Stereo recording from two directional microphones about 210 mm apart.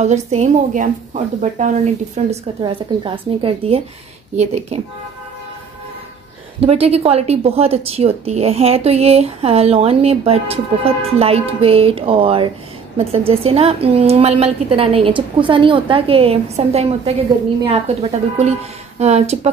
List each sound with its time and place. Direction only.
0.0 s a woman's voice: 35° right (ahead or behind)
2.6 s a woman's voice: 25° right (ahead or behind)
6.6 s a woman's voice: 30° right (ahead or behind)